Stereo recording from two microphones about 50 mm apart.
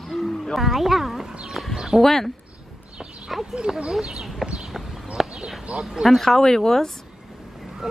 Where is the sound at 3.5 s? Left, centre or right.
Centre.